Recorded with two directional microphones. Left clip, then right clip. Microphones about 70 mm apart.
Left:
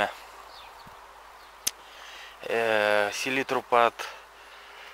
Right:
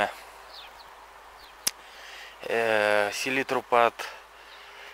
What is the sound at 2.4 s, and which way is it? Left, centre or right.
Speech, centre.